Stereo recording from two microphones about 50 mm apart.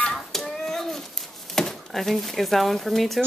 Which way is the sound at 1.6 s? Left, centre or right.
Centre.